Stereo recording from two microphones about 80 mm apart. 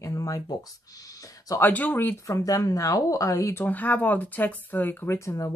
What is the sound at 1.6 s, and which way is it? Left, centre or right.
Speech, left.